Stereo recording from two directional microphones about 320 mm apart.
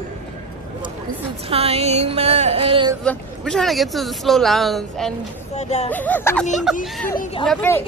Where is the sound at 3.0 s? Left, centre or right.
Centre.